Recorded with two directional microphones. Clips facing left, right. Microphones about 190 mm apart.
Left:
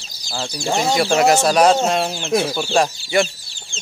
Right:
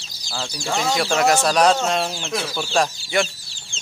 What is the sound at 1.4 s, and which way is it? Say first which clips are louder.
A man's voice: left 3 dB; 5° left (ahead or behind).